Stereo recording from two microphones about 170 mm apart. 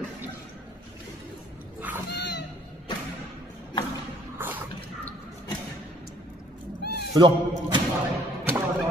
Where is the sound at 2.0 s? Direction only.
85° left.